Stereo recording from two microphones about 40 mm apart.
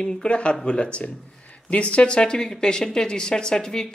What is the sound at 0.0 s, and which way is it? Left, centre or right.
A woman's voice, left.